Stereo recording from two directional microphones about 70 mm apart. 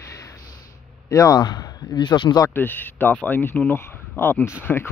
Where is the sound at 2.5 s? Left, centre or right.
Left.